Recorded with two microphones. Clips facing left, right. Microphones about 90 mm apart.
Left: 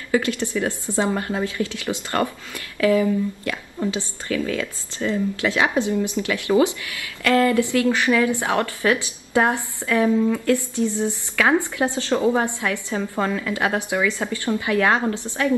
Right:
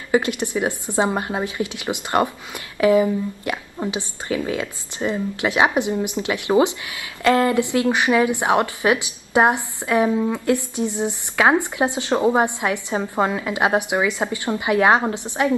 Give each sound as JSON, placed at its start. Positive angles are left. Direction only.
{"t": 0.1, "sound": "speech", "side_deg": -20}